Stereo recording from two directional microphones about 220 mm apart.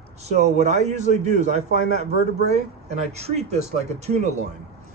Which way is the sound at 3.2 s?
30° right (ahead or behind).